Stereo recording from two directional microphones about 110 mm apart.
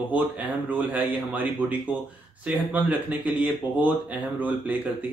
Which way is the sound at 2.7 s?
15° right (ahead or behind).